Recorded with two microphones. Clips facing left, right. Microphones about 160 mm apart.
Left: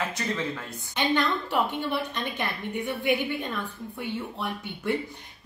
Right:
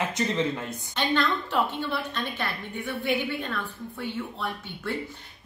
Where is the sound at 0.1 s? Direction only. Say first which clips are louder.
Right 4 dB; 20° right (ahead or behind).